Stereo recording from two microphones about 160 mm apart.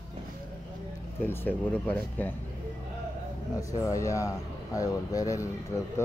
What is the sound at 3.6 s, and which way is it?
Speech, 20° left (ahead or behind).